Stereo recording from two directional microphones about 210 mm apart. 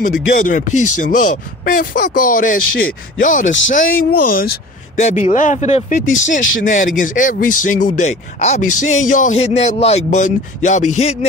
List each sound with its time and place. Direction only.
0.0 s speech: 40° left (ahead or behind)